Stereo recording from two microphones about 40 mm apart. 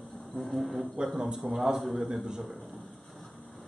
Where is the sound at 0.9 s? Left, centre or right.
Centre.